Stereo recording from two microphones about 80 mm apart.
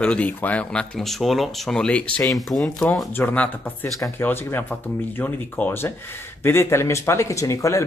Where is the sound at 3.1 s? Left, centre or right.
Centre.